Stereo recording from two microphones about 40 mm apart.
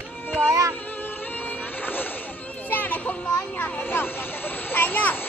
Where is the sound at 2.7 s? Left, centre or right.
Left.